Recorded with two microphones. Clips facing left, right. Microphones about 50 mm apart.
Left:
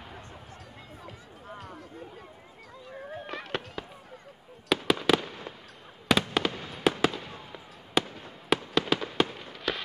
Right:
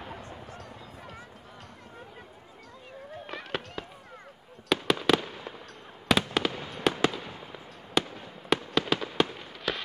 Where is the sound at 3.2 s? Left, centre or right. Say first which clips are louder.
Right 1 dB; centre.